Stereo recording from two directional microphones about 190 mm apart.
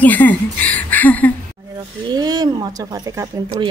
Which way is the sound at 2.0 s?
20° right (ahead or behind).